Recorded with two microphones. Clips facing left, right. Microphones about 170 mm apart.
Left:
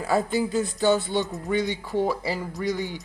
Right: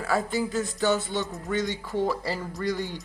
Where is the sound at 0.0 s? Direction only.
20° left (ahead or behind).